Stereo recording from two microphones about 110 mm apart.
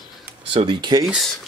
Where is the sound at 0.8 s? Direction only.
40° right (ahead or behind).